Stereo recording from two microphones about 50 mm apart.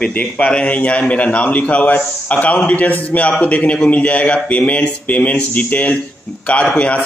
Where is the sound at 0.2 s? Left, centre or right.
Left.